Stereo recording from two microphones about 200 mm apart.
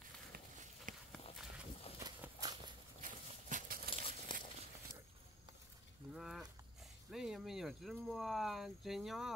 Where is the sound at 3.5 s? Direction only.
45° right (ahead or behind).